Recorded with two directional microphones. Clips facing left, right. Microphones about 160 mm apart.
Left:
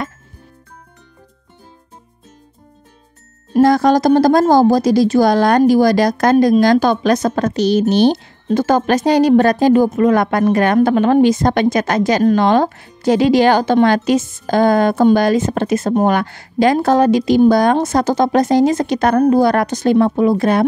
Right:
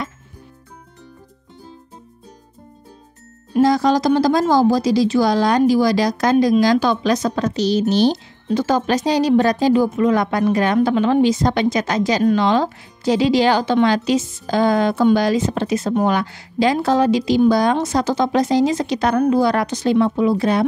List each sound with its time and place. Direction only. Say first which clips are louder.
3.5 s speech: left 4 dB; 55° left (ahead or behind)